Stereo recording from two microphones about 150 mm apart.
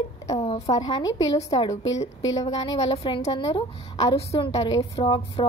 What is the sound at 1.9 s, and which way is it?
A woman's voice, 50° left (ahead or behind).